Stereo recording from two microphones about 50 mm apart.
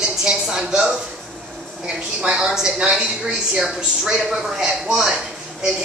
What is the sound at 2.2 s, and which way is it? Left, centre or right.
A woman's voice, right.